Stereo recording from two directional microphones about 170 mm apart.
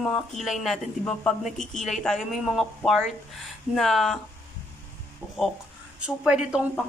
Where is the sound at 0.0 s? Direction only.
Centre (ahead or behind).